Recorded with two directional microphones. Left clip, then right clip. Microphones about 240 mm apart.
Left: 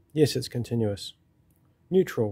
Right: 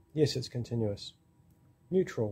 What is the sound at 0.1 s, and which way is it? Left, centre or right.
Speech, left.